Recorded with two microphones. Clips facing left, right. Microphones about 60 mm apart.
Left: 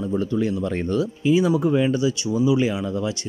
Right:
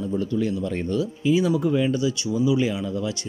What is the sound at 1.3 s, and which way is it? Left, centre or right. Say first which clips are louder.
Speech: left 2 dB; left.